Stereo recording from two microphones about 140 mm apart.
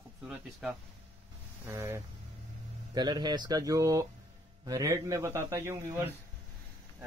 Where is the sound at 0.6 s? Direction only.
Centre (ahead or behind).